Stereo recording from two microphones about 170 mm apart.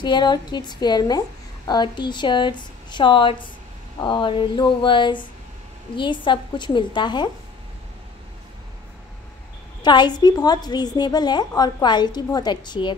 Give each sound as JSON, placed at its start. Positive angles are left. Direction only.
{"t": 0.0, "sound": "a woman's voice", "side_deg": 25}
{"t": 9.8, "sound": "a woman's voice", "side_deg": 25}